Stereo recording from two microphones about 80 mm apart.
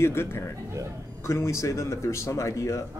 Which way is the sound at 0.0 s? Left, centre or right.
Left.